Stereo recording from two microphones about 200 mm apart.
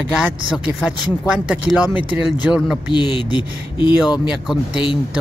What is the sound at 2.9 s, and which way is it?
Speech, 25° left (ahead or behind).